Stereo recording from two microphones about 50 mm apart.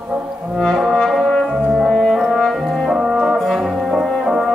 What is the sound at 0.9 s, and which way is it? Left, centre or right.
Brass instrument, centre.